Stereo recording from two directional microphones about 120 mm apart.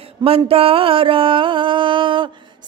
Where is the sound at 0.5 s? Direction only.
50° right (ahead or behind).